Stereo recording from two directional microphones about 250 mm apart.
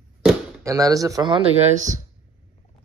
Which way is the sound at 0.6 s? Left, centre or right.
Centre.